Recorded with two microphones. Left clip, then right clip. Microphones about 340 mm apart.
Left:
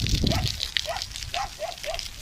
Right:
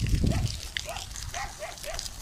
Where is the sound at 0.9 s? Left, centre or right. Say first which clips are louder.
Left 6 dB; left.